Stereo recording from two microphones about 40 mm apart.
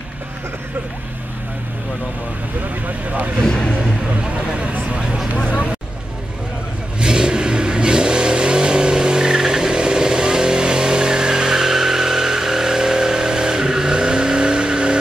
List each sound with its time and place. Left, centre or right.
3.1 s speech: right
3.4 s vehicle: centre
4.2 s a sound: right
7.0 s vehicle: centre